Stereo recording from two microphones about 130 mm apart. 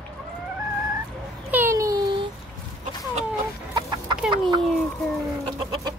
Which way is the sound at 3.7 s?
35° right (ahead or behind).